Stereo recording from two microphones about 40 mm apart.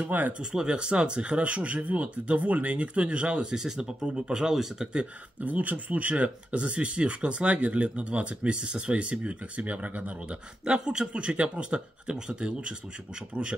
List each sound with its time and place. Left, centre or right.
0.0 s speech: right
0.4 s speech: centre
3.5 s speech: centre
5.4 s speech: right
10.6 s speech: right